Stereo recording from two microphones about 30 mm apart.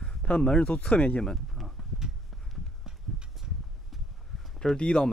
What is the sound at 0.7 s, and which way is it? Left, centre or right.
Speech, left.